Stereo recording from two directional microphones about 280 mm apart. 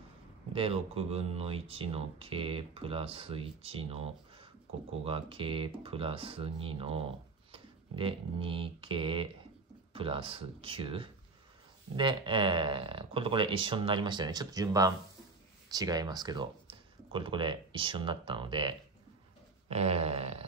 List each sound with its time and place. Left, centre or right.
0.5 s speech: centre
7.5 s a sound: centre
9.9 s speech: centre